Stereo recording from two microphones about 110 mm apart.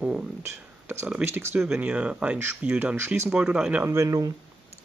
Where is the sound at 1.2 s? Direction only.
20° right (ahead or behind).